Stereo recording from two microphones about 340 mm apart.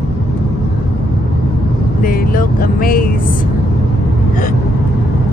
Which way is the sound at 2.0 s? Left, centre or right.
Left.